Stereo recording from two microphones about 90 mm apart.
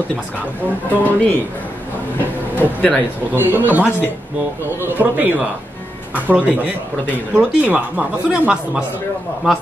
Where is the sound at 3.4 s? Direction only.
20° right (ahead or behind).